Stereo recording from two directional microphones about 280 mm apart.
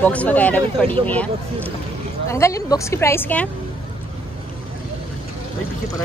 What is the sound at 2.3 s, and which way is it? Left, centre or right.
Speech, centre.